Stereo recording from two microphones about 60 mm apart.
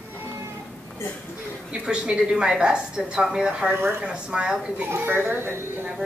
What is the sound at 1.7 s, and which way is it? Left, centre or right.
A woman's voice, centre.